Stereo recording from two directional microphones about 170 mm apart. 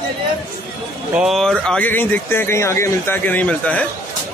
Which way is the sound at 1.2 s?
Centre (ahead or behind).